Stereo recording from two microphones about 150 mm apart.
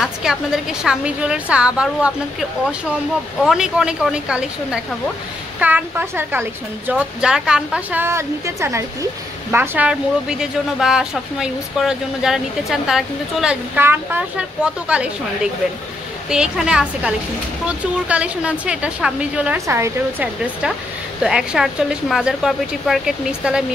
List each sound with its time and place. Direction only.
0.0 s speech: 5° right (ahead or behind)
3.4 s a woman's voice: 5° right (ahead or behind)
13.7 s a woman's voice: 15° right (ahead or behind)
19.6 s a woman's voice: 20° right (ahead or behind)
21.2 s speech: 5° right (ahead or behind)